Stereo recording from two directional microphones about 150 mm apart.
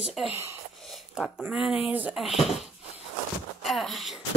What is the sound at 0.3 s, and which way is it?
Speech, 15° right (ahead or behind).